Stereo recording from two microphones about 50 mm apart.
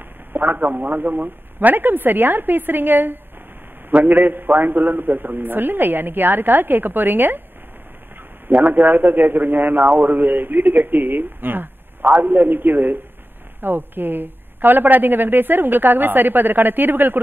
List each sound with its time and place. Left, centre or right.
0.3 s a man's voice: right
8.5 s a man's voice: right